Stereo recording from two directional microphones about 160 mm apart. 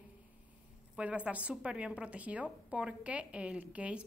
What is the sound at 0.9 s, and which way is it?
A woman's voice, 5° right (ahead or behind).